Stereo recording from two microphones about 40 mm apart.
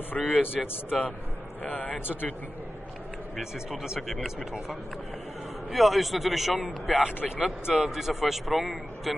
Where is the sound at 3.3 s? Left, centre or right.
Centre.